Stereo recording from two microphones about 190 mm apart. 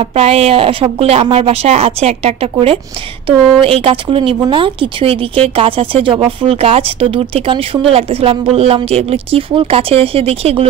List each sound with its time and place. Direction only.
0.0 s speech: 30° right (ahead or behind)